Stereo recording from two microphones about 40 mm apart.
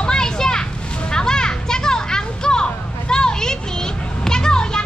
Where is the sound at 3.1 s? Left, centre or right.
Centre.